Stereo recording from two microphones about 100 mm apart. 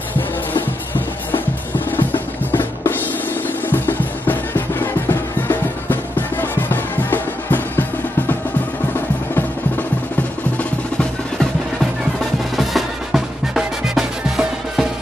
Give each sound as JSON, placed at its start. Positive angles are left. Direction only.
{"t": 0.6, "sound": "music", "side_deg": 20}
{"t": 1.9, "sound": "drum", "side_deg": 20}
{"t": 3.7, "sound": "music", "side_deg": 20}
{"t": 12.5, "sound": "music", "side_deg": 0}